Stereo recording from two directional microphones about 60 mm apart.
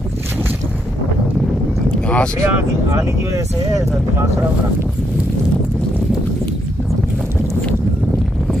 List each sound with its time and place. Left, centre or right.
1.9 s boat: left
2.3 s speech: right